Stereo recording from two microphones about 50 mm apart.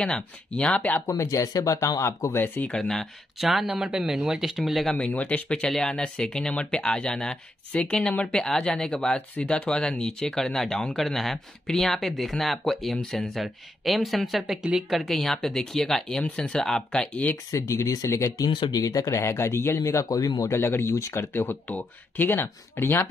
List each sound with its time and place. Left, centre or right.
0.0 s speech: centre
1.0 s speech: left
2.3 s speech: left
2.9 s speech: centre
4.9 s speech: left; by 9.1 s centre
9.1 s speech: left; by 14.6 s centre
14.6 s speech: centre
14.9 s speech: centre
17.5 s a man's voice: left
20.9 s speech: left
21.6 s speech: left
22.2 s speech: left